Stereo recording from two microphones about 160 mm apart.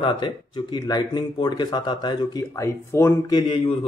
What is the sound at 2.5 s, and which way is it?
Speech, 15° left (ahead or behind).